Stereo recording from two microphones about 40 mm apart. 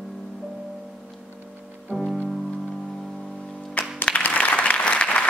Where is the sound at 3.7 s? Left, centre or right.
Left.